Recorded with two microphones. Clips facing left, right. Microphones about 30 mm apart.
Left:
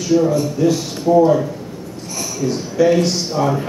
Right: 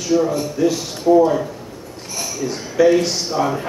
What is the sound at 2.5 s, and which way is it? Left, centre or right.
A man's voice, centre.